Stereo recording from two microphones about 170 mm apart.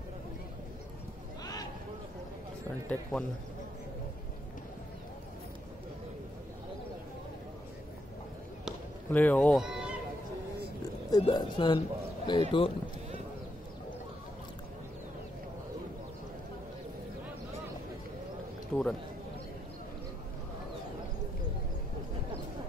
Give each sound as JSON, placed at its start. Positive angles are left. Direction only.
{"t": 1.4, "sound": "a sound", "side_deg": 20}
{"t": 2.9, "sound": "speech", "side_deg": 5}
{"t": 9.1, "sound": "speech", "side_deg": 10}
{"t": 9.6, "sound": "speech", "side_deg": -5}
{"t": 11.1, "sound": "speech", "side_deg": 25}
{"t": 18.7, "sound": "a man's voice", "side_deg": 5}